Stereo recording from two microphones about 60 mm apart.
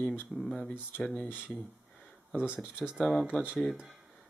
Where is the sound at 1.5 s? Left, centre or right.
Centre.